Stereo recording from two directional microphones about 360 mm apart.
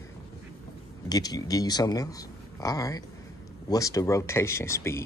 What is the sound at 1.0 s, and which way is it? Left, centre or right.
A man's voice, centre.